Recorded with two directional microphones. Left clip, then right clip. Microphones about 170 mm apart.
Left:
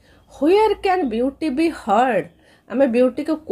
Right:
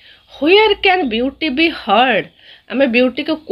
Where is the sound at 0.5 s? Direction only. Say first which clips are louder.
Right 5 dB; 20° right (ahead or behind).